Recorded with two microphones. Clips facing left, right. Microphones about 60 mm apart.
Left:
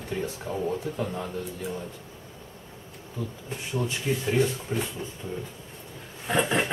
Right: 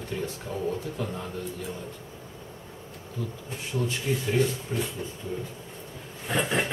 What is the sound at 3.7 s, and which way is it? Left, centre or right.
Speech, centre.